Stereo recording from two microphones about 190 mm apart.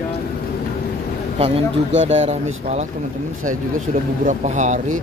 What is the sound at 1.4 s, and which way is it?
Speech, 35° right (ahead or behind).